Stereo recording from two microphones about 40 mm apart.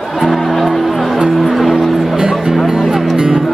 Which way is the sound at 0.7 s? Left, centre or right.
Centre.